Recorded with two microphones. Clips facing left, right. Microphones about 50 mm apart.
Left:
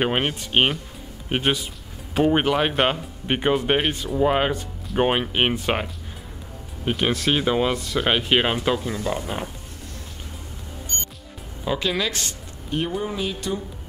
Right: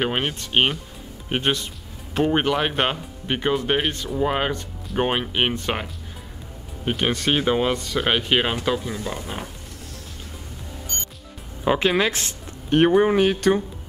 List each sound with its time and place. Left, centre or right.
0.0 s speech: centre
3.3 s speech: centre
6.9 s speech: centre
11.6 s speech: right
12.6 s speech: right